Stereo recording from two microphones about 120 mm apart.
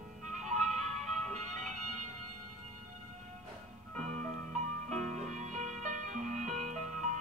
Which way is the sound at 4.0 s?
90° right.